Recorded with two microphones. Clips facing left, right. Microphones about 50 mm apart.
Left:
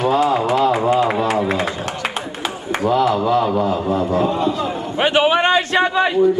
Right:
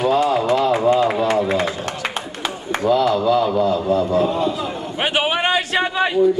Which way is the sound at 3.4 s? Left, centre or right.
Centre.